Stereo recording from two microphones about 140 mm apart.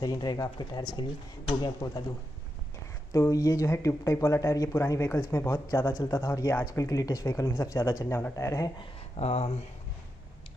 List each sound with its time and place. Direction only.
0.0 s a man's voice: 30° left (ahead or behind)
3.1 s speech: 25° left (ahead or behind)
9.1 s speech: 45° left (ahead or behind)